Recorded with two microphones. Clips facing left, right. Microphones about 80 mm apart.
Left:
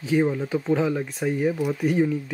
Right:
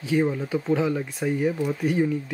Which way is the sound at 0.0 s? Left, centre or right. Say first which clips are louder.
Left 1 dB; centre.